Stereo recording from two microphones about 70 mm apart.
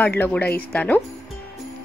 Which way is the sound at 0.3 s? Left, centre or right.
Left.